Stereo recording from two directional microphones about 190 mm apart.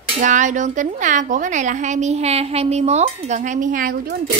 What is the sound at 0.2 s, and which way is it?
A woman's voice, 40° right (ahead or behind).